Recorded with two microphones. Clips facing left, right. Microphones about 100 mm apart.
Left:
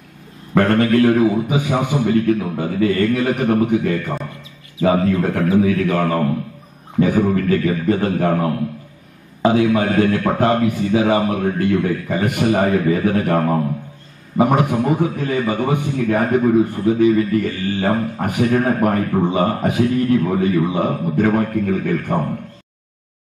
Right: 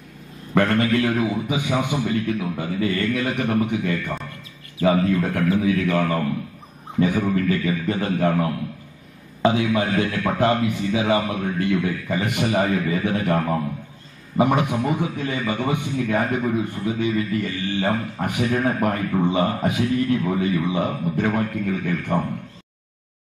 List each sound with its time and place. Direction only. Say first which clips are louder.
0.6 s a man's voice: left 5 dB; 40° left (ahead or behind)